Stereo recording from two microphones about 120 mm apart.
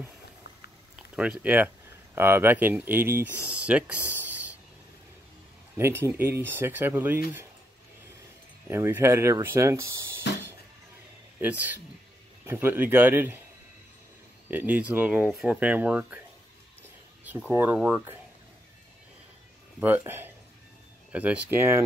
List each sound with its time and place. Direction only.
1.1 s speech: 10° right (ahead or behind)
5.8 s speech: 20° right (ahead or behind)
8.6 s speech: 20° right (ahead or behind)
11.3 s speech: 15° right (ahead or behind)
14.5 s speech: 15° right (ahead or behind)
17.2 s speech: 15° right (ahead or behind)
17.7 s speech: 5° right (ahead or behind)
20.0 s speech: 20° right (ahead or behind)